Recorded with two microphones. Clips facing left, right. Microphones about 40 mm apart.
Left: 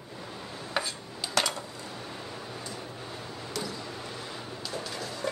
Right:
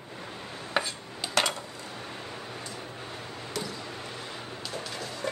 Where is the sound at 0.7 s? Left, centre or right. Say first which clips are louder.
Right 3 dB; right.